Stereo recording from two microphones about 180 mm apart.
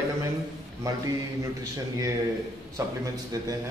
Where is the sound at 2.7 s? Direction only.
20° right (ahead or behind).